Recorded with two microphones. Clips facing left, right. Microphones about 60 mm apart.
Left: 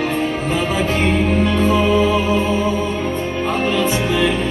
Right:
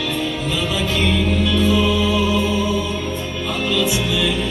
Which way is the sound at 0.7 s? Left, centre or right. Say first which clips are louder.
Left 1 dB; left.